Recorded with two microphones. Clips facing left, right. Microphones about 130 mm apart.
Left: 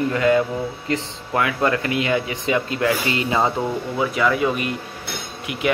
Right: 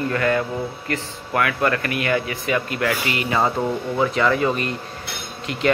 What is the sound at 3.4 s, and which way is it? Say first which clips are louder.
A man's voice: even; 5° left (ahead or behind).